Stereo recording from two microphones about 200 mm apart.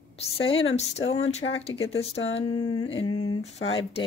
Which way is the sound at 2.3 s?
25° left (ahead or behind).